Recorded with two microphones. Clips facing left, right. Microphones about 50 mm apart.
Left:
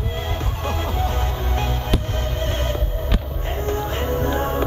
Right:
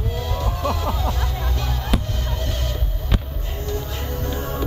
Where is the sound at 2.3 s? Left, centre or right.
Left.